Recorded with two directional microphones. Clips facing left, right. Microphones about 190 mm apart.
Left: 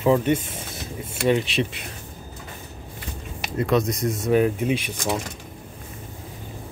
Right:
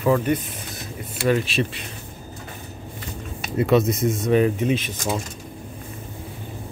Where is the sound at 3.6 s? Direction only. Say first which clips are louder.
Right 3 dB; 5° right (ahead or behind); by 4.9 s 10° left (ahead or behind).